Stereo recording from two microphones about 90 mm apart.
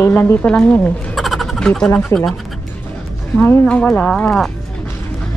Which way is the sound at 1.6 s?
10° left (ahead or behind).